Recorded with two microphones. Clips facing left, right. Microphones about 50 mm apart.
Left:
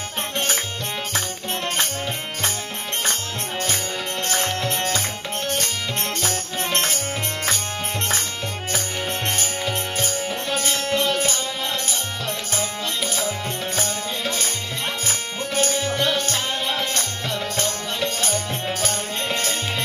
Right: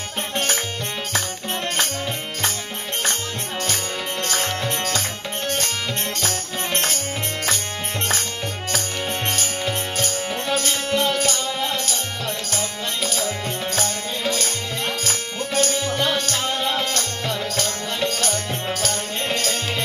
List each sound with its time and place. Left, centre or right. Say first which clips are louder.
4.3 s music: left 1 dB; centre
9.9 s music: right 1 dB; left
12.5 s music: left 2 dB; left
15.0 s music: right 1 dB; left
17.6 s music: right 1 dB; left